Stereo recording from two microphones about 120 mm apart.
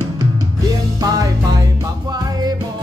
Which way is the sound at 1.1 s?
30° right (ahead or behind).